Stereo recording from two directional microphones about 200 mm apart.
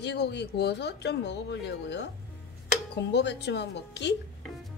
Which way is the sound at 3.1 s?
60° left (ahead or behind).